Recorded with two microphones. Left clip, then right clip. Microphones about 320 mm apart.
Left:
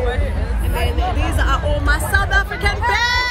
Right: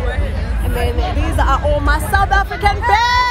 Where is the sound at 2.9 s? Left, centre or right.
Centre.